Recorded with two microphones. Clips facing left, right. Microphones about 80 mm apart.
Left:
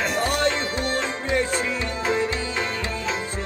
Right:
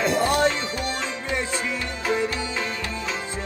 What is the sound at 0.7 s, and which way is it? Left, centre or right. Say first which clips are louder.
Music: left 3 dB; left.